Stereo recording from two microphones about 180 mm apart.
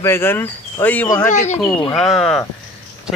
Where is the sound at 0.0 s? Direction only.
15° left (ahead or behind).